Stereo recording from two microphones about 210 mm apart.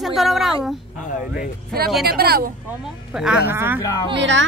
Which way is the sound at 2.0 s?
50° right (ahead or behind).